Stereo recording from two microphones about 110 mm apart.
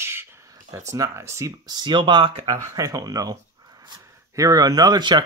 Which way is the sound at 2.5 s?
30° right (ahead or behind).